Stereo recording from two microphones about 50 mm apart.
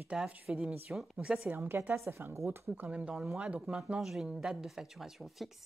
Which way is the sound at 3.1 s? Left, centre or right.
Centre.